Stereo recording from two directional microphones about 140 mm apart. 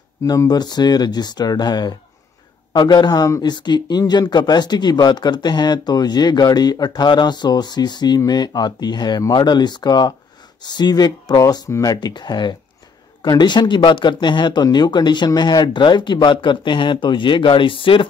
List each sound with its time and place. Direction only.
0.2 s speech: 25° left (ahead or behind)